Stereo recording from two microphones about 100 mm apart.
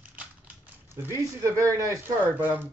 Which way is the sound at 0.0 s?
10° right (ahead or behind).